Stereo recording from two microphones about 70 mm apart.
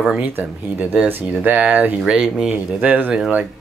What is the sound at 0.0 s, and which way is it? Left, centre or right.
Speech, centre.